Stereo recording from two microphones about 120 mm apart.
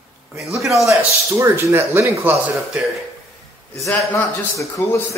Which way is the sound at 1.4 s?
20° right (ahead or behind).